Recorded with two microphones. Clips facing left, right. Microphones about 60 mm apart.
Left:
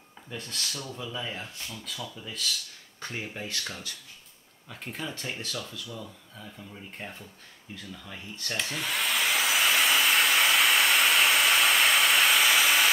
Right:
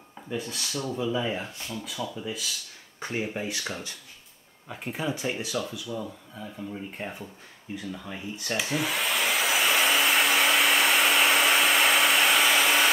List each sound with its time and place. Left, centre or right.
0.3 s speech: centre
7.7 s hair dryer: centre